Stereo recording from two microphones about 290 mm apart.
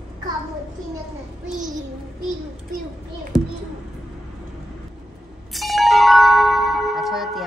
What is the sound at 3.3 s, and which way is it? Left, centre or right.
Speech, centre.